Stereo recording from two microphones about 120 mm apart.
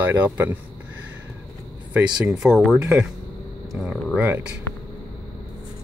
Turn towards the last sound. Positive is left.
turn(degrees=-10)  # may be behind; listen again after turning